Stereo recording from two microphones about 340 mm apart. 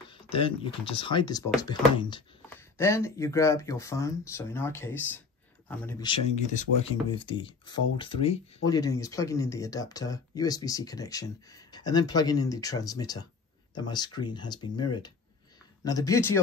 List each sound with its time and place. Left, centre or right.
0.1 s speech: centre